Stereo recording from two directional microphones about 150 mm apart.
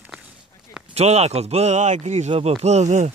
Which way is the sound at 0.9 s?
45° right (ahead or behind).